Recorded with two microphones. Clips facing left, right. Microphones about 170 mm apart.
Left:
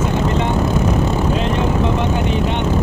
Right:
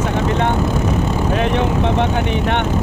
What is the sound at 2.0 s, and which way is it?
Speech, 65° right (ahead or behind).